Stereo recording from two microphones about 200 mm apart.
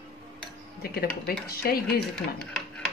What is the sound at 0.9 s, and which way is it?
Speech, 50° left (ahead or behind).